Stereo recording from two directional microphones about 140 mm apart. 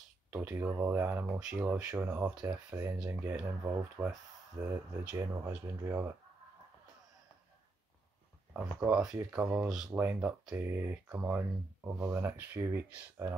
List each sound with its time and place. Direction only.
0.3 s speech: 10° right (ahead or behind)
8.5 s speech: 10° right (ahead or behind)